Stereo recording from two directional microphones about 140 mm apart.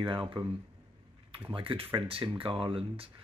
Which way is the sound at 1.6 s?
40° right (ahead or behind).